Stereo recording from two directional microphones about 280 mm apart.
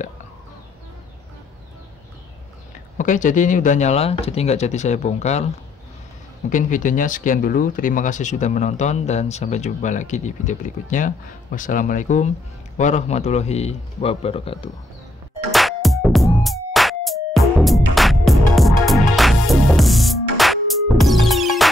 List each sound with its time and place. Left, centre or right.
3.0 s speech: left
6.5 s speech: left
15.5 s music: centre